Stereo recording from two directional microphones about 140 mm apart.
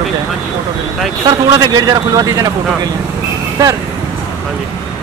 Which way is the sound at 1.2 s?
30° right (ahead or behind).